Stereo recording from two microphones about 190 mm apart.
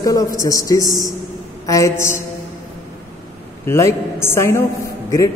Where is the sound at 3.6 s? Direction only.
15° left (ahead or behind).